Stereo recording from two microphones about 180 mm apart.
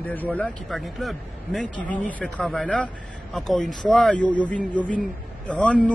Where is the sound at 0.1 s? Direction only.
10° left (ahead or behind).